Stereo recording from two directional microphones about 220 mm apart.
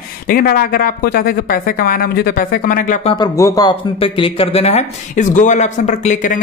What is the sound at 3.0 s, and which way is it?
Speech, 20° left (ahead or behind).